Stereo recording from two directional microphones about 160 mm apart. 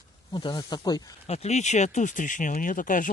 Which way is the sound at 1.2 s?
40° left (ahead or behind).